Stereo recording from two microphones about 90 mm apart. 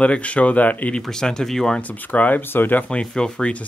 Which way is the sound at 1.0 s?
5° left (ahead or behind).